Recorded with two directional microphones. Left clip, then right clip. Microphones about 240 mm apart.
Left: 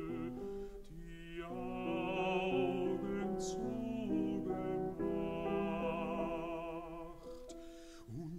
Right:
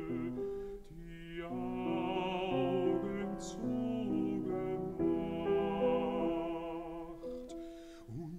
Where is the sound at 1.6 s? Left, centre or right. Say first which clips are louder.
Right 3 dB; left.